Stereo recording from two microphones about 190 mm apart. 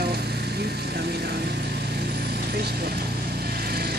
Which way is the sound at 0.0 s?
60° right (ahead or behind).